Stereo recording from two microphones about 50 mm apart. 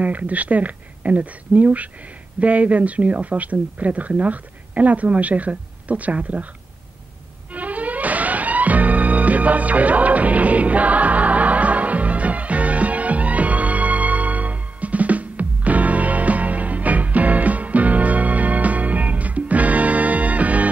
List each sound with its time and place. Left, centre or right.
0.0 s speech: right
7.5 s music: right